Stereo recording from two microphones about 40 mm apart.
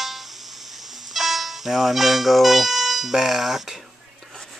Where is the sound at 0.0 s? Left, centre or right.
Centre.